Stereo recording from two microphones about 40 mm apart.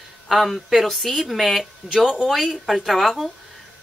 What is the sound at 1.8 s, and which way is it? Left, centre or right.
Speech, centre.